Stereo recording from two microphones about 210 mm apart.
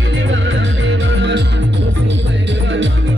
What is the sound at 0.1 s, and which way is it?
Music, 60° right (ahead or behind).